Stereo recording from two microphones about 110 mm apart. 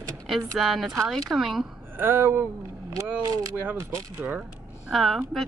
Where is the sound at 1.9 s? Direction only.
20° right (ahead or behind).